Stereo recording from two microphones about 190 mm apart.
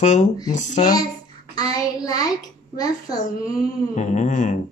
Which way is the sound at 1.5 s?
20° left (ahead or behind).